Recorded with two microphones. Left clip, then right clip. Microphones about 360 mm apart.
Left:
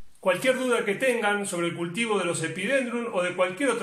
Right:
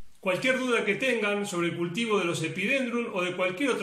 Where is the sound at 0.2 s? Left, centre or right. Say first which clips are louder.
Left 3 dB; left.